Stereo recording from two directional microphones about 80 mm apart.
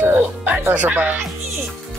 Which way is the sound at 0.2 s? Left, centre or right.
Centre.